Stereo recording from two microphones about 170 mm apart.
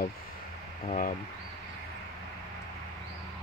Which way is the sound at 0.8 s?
50° left (ahead or behind).